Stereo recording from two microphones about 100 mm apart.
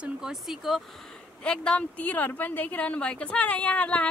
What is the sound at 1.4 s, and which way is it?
A woman's voice, 10° left (ahead or behind).